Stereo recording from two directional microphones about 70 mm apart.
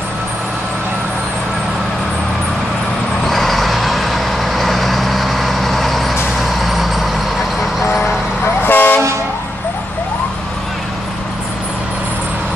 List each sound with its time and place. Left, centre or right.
3.3 s vehicle: centre
8.6 s toot: left